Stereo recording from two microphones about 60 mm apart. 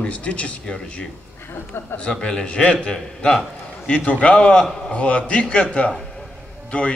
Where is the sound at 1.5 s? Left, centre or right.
Left.